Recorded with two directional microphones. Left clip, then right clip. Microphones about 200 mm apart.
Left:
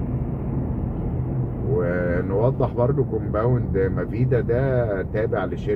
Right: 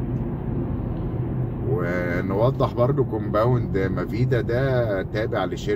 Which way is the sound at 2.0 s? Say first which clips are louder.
Left 1 dB; 10° left (ahead or behind).